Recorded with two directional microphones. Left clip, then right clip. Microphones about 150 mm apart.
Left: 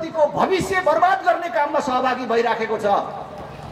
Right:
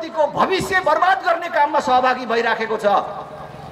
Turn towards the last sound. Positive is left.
turn(degrees=-30)  # may be behind; listen again after turning